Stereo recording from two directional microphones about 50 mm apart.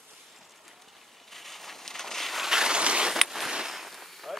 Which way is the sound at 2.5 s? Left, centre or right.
Centre.